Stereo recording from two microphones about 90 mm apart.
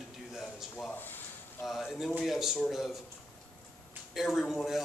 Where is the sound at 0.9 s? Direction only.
20° left (ahead or behind).